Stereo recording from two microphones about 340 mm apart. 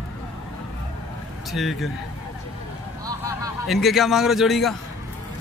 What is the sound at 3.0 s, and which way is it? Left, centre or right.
A man's voice, centre.